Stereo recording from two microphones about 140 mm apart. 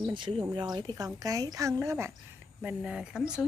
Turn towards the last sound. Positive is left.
turn(degrees=-5)  # may be behind; listen again after turning